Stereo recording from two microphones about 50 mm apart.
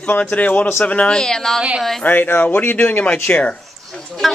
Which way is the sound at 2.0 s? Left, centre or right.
Left.